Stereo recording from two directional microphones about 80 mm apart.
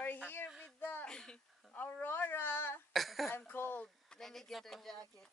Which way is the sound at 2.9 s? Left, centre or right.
Centre.